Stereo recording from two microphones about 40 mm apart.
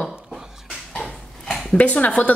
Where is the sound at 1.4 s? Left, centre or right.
Centre.